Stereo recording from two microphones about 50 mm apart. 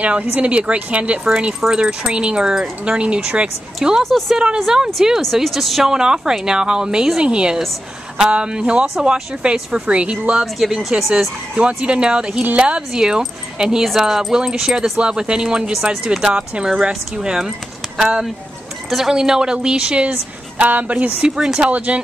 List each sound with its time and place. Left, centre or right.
0.0 s a woman's voice: right
4.0 s a woman's voice: centre
5.9 s a woman's voice: centre
10.4 s speech: centre
11.5 s a woman's voice: right
16.3 s a woman's voice: right; by 19.1 s centre
19.1 s a woman's voice: centre